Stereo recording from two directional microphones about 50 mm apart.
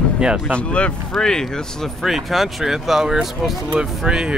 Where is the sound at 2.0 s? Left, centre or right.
Centre.